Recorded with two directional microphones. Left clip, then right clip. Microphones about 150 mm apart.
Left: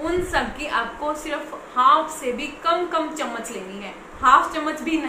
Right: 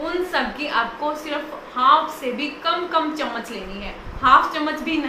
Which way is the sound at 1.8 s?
5° left (ahead or behind).